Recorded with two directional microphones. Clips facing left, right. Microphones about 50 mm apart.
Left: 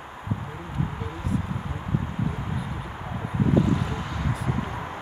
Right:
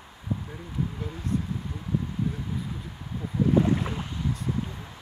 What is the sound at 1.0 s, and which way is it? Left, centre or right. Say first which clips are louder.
Speech: left 1 dB; left.